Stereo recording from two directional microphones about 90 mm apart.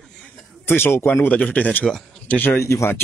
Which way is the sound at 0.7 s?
25° left (ahead or behind).